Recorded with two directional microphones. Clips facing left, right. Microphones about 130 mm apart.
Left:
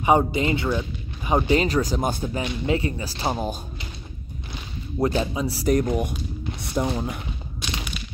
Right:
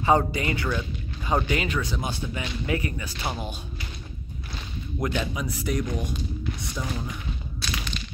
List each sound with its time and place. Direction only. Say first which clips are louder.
0.0 s speech: left 3 dB; 15° left (ahead or behind)
1.5 s speech: left 7 dB; 35° left (ahead or behind)
2.4 s speech: left 4 dB; 25° left (ahead or behind)
5.0 s speech: left 5 dB; 30° left (ahead or behind)
5.7 s speech: left 8 dB; 55° left (ahead or behind)